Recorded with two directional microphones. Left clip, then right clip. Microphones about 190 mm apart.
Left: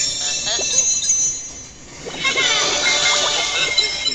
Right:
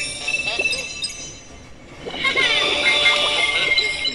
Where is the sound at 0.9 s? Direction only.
45° right (ahead or behind).